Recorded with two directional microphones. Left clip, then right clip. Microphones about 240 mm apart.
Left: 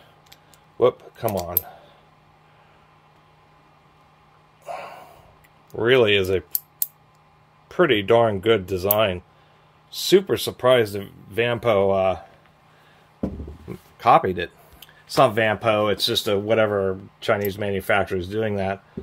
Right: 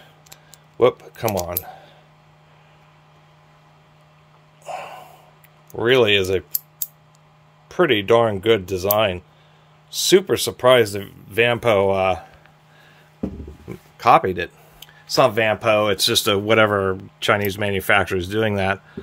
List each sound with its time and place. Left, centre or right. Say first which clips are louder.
0.3 s keys jangling: right 3 dB; right
4.6 s snort: right 2 dB; centre
5.7 s speech: right 1 dB; centre
7.6 s speech: right 1 dB; centre
13.7 s speech: right 2 dB; right